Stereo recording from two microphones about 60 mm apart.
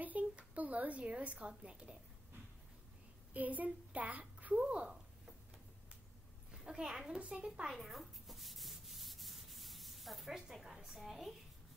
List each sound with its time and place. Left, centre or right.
0.0 s a sound: right
1.6 s a woman's voice: centre
3.3 s a child's voice: right
6.5 s a woman's voice: centre
7.7 s sanding: centre